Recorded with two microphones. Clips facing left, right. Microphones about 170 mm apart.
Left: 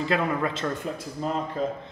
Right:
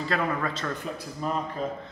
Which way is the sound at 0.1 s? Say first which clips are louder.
Left 2 dB; 15° left (ahead or behind).